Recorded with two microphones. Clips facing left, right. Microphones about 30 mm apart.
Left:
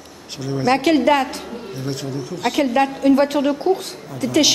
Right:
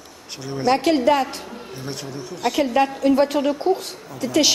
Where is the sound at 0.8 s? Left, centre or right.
Centre.